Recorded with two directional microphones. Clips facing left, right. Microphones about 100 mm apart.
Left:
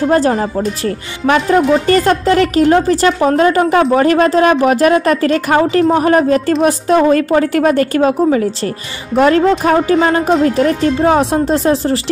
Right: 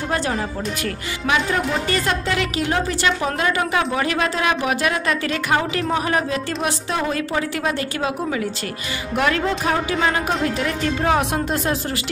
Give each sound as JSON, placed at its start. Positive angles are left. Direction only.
{"t": 0.1, "sound": "a woman's voice", "side_deg": 40}